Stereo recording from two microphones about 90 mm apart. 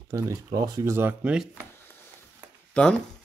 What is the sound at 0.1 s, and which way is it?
Speech, 40° right (ahead or behind).